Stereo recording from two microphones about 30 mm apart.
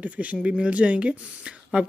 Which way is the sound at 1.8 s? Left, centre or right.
Right.